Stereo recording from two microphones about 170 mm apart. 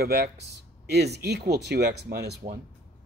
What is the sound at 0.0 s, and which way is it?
Speech, 70° right (ahead or behind).